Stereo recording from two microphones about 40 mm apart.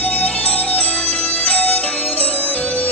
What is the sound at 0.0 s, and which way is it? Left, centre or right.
Music, left.